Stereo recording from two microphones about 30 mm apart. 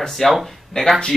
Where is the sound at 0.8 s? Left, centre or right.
Left.